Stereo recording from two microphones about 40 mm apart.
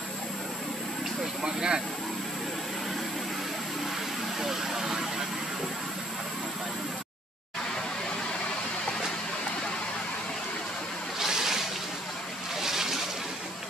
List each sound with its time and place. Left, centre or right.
1.4 s a sound: right
4.4 s vehicle: centre
11.1 s boat: centre